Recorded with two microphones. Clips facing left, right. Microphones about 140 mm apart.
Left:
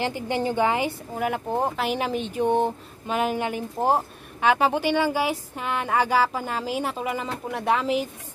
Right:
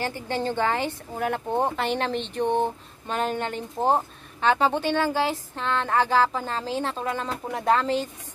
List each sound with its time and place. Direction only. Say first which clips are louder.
0.0 s speech: left 2 dB; 15° left (ahead or behind)